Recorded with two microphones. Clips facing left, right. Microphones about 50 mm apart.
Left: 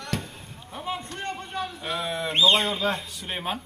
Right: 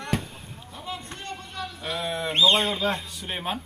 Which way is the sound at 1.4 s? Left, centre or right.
Left.